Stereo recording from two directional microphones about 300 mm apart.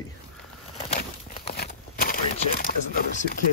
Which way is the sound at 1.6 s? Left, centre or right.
Left.